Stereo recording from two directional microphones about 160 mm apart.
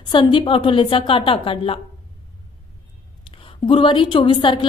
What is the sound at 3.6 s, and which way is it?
Speech, 30° left (ahead or behind).